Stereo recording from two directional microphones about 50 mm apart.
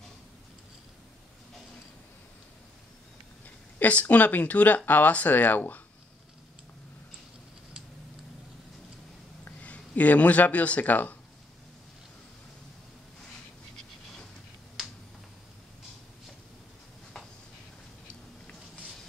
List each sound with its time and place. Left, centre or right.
3.8 s speech: left
9.6 s speech: left
14.8 s finger snapping: centre